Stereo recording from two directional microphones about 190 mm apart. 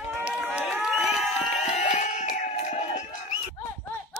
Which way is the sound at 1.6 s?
35° left (ahead or behind).